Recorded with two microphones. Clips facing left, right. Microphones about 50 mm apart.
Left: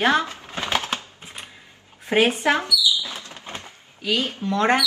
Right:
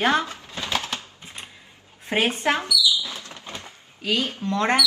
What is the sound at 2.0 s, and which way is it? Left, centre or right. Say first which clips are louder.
Speech: left 3 dB; left.